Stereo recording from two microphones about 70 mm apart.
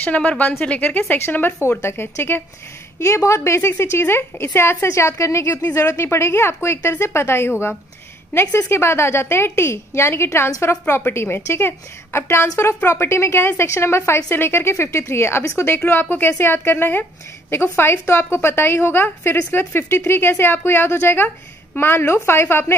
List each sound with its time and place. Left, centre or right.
0.0 s a woman's voice: centre
3.0 s a woman's voice: left